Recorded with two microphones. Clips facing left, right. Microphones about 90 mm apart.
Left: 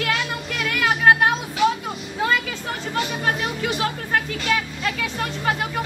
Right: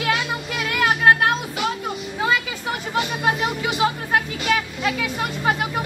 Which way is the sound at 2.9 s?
15° right (ahead or behind).